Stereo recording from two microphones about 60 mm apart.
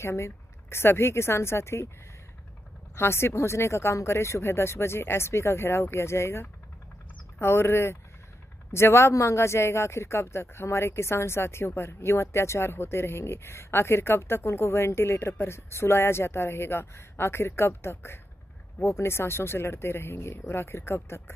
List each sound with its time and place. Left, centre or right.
0.0 s speech: left
3.0 s speech: left